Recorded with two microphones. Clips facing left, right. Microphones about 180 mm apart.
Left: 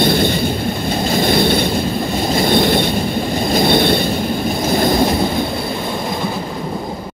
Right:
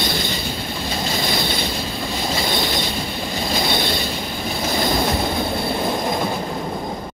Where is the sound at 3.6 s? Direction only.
55° left (ahead or behind).